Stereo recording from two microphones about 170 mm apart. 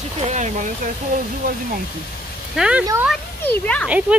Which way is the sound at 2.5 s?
5° right (ahead or behind).